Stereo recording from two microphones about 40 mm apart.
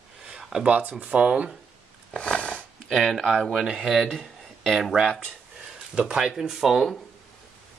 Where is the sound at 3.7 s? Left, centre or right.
Centre.